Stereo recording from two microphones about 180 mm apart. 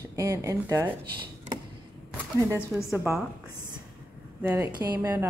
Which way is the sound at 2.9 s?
15° right (ahead or behind).